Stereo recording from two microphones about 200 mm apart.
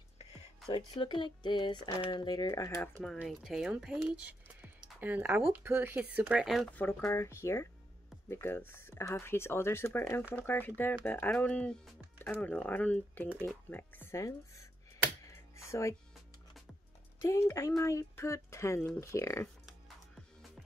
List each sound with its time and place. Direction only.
0.7 s speech: 25° left (ahead or behind)
3.2 s speech: centre (ahead or behind)
13.3 s speech: 5° right (ahead or behind)
13.7 s speech: 10° left (ahead or behind)
15.2 s music: 15° left (ahead or behind)
17.2 s speech: 15° left (ahead or behind)